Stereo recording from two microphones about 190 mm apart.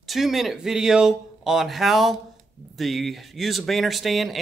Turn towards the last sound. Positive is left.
turn(degrees=0)  # may be behind; listen again after turning